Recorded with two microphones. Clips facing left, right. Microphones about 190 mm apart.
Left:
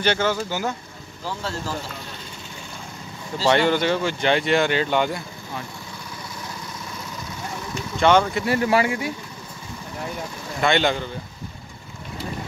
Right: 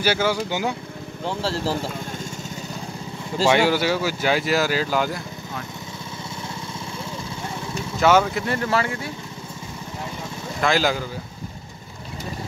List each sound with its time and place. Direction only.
0.0 s speech: 10° right (ahead or behind)
1.2 s speech: 30° right (ahead or behind)
3.4 s speech: 5° right (ahead or behind)
8.0 s speech: 5° right (ahead or behind)
8.5 s speech: 10° left (ahead or behind)
10.6 s speech: centre (ahead or behind)